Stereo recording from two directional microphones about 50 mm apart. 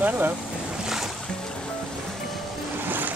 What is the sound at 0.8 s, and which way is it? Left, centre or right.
Music, centre.